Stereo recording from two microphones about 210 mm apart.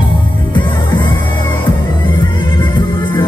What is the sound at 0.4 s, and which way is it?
Music, 20° left (ahead or behind).